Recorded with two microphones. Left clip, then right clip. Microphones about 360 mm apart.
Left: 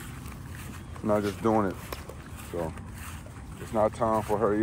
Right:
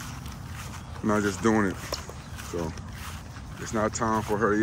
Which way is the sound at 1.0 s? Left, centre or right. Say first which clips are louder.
Right 1 dB; centre.